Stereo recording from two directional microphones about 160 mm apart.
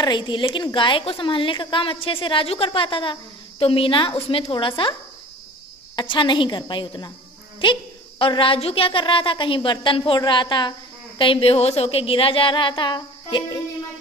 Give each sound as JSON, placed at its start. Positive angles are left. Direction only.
{"t": 0.0, "sound": "a woman's voice", "side_deg": 30}
{"t": 5.9, "sound": "a woman's voice", "side_deg": 30}